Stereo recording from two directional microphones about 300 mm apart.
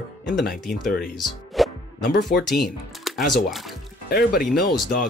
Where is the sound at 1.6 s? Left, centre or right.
Centre.